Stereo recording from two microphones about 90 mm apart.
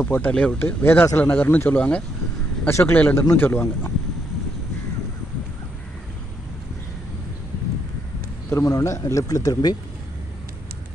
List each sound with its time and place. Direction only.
0.0 s speech: 20° left (ahead or behind)
8.5 s speech: 40° left (ahead or behind)